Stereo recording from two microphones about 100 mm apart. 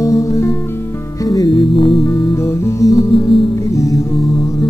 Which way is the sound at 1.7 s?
55° left (ahead or behind).